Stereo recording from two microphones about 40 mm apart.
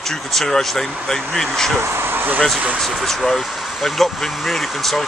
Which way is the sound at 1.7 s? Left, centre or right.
Right.